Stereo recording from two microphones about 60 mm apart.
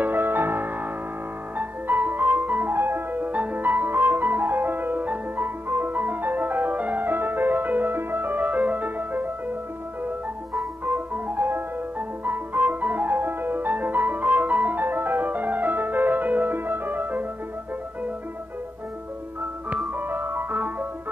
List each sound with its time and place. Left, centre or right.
0.0 s music: right
10.9 s music: right
20.0 s ice cream truck: right